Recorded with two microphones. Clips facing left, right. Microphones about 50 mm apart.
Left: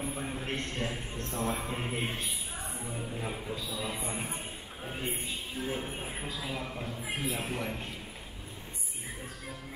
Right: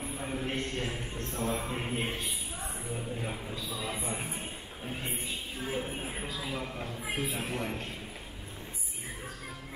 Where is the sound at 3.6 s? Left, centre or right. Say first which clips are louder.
Right 2 dB; right.